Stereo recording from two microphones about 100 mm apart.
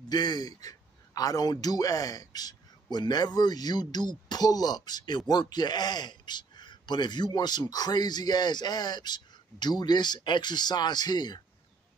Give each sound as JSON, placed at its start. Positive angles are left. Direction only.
{"t": 0.1, "sound": "a man's voice", "side_deg": 45}